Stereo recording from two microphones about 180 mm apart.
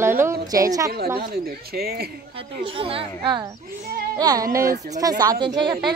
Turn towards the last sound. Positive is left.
turn(degrees=-25)  # may be behind; listen again after turning